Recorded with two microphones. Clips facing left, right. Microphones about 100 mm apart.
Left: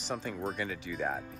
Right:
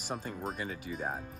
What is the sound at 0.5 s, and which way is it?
Speech, 40° right (ahead or behind).